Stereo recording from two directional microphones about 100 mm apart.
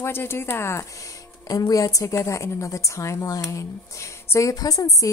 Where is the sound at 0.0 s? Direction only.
25° left (ahead or behind).